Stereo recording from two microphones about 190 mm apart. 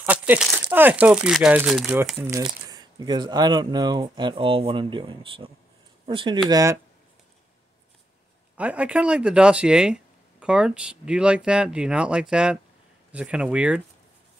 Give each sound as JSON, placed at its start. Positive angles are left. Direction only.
{"t": 0.0, "sound": "speech", "side_deg": -10}
{"t": 2.4, "sound": "speech", "side_deg": -20}
{"t": 8.5, "sound": "speech", "side_deg": -5}